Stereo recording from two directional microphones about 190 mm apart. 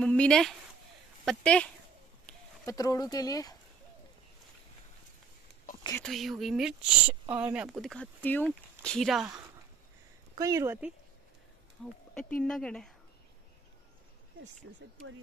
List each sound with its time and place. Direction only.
0.0 s speech: 5° left (ahead or behind)
2.6 s speech: 20° left (ahead or behind)
6.0 s speech: centre (ahead or behind)
10.3 s speech: 15° right (ahead or behind)
11.8 s speech: 5° left (ahead or behind)